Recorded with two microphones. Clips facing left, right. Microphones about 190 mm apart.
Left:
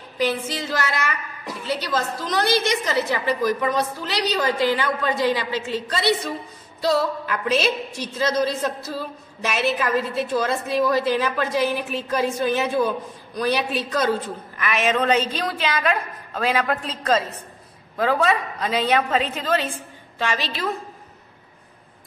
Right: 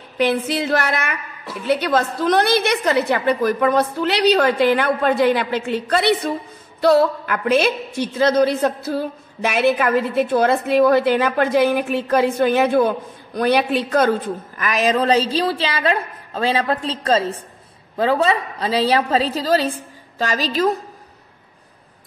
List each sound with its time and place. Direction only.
0.2 s a woman's voice: 65° right (ahead or behind)
14.6 s a woman's voice: 35° right (ahead or behind)